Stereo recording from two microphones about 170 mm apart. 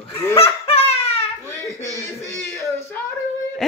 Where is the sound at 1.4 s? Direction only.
15° left (ahead or behind).